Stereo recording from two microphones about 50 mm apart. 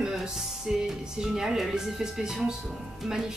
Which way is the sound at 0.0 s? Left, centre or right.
Centre.